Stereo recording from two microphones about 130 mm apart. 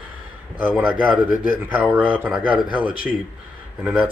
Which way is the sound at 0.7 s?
10° right (ahead or behind).